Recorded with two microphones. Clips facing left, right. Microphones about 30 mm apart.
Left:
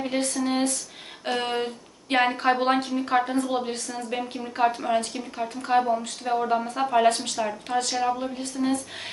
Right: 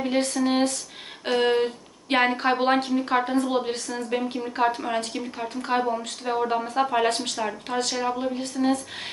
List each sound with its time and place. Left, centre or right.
0.2 s speech: right